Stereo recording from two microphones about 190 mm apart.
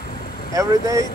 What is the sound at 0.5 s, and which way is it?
Speech, 15° right (ahead or behind).